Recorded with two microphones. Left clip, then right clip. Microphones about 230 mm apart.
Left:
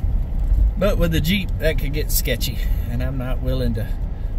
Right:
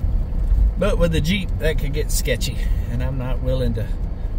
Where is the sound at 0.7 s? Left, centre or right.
Centre.